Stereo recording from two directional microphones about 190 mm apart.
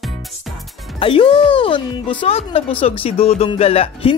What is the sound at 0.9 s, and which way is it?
Speech, 30° left (ahead or behind).